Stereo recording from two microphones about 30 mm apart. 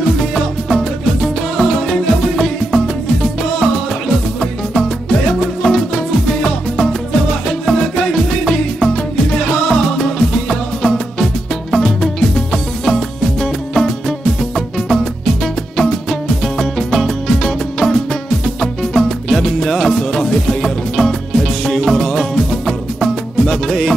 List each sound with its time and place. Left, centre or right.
0.2 s music: centre
5.6 s music: centre